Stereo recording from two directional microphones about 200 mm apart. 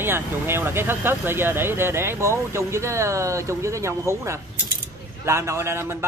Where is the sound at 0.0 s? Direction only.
10° right (ahead or behind).